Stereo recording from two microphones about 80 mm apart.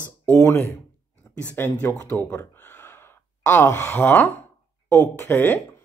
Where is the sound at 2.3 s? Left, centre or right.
Left.